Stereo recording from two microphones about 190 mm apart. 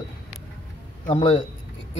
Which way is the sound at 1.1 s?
30° left (ahead or behind).